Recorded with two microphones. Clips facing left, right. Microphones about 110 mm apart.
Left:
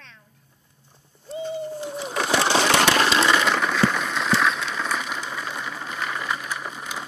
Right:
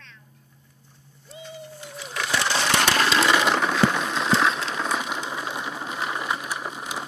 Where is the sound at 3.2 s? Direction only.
15° right (ahead or behind).